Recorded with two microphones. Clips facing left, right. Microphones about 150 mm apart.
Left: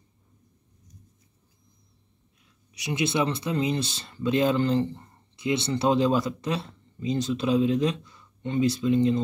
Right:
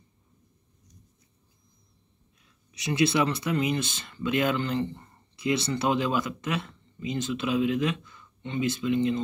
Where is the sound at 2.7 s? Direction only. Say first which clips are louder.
Right 2 dB; 15° left (ahead or behind).